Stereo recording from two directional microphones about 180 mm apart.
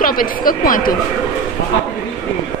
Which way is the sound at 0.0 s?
55° left (ahead or behind).